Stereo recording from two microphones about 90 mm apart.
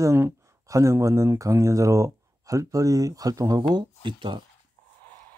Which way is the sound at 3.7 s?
60° right (ahead or behind).